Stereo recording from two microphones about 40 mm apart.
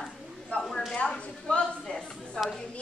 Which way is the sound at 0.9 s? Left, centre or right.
Left.